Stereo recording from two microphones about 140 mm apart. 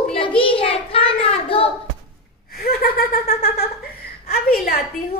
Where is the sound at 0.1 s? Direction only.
40° left (ahead or behind).